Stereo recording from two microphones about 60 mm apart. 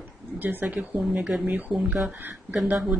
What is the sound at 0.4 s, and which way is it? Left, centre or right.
Speech, right.